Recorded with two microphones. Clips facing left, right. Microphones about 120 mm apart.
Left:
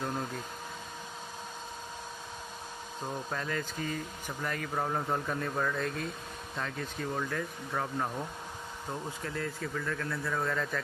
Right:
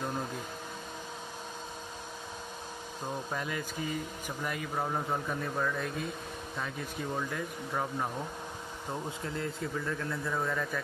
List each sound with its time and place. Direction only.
3.3 s speech: 10° right (ahead or behind)
9.2 s speech: 25° right (ahead or behind)